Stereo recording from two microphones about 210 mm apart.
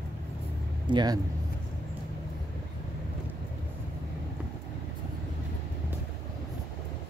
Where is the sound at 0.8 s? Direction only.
20° right (ahead or behind).